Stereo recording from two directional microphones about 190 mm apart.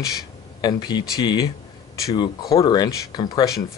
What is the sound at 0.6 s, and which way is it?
Speech, 20° left (ahead or behind).